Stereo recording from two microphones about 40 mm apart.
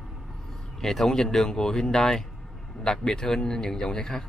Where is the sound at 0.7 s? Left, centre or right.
Centre.